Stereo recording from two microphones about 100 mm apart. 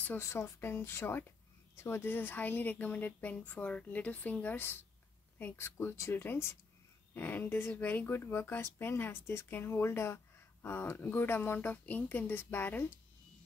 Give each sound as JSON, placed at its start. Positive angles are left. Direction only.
{"t": 0.0, "sound": "a woman's voice", "side_deg": 20}